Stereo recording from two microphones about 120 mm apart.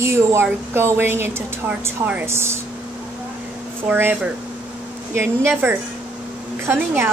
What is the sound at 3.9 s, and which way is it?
Speech, 15° right (ahead or behind).